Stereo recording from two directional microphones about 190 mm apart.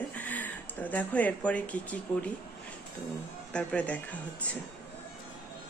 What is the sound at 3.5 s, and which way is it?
Speech, 5° left (ahead or behind).